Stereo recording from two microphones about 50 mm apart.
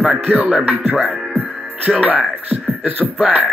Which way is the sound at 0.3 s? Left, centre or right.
Right.